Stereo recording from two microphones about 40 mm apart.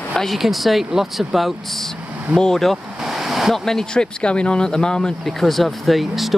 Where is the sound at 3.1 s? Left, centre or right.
Centre.